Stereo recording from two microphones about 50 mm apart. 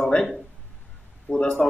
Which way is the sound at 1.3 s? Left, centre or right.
Centre.